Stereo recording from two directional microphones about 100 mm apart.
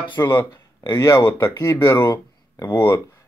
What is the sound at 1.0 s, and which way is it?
Speech, 25° left (ahead or behind).